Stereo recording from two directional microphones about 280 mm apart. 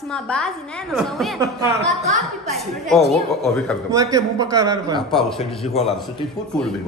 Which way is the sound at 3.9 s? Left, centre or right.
Centre.